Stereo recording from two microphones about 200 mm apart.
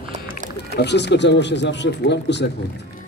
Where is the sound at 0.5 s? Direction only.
55° left (ahead or behind).